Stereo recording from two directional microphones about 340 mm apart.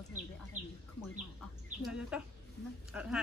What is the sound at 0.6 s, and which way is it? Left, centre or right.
Speech, centre.